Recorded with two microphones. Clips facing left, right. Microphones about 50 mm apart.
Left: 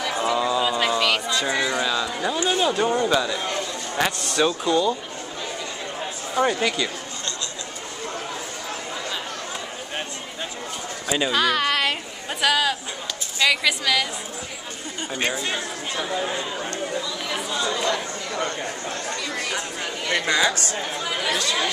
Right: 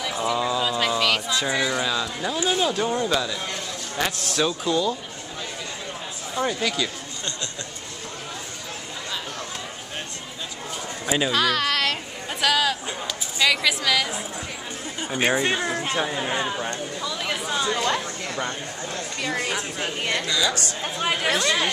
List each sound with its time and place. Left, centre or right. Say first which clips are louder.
0.2 s speech: left 2 dB; centre
6.3 s speech: left 3 dB; centre
11.1 s a woman's voice: even; centre
11.3 s music: left 3 dB; centre
13.4 s a woman's voice: left 1 dB; centre
15.0 s speech: right 3 dB; centre
15.6 s speech: right 4 dB; right
16.5 s speech: right 1 dB; centre
17.0 s speech: right 1 dB; right
20.2 s speech: left 5 dB; left
20.5 s speech: left 1 dB; right
21.4 s speech: right 2 dB; right